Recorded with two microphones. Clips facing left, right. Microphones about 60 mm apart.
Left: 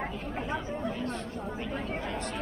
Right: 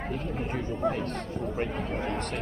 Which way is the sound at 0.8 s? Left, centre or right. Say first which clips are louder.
Right 9 dB; right.